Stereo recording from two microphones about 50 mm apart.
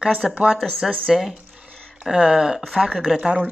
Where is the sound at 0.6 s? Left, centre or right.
Centre.